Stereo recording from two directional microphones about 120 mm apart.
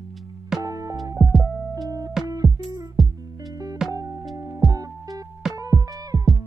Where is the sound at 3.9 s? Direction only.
30° right (ahead or behind).